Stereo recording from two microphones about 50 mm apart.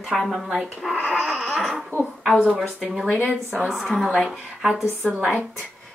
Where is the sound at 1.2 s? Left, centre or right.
Centre.